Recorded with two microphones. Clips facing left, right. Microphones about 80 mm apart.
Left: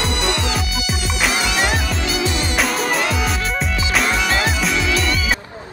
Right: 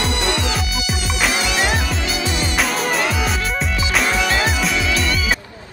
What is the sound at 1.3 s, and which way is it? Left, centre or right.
Music, right.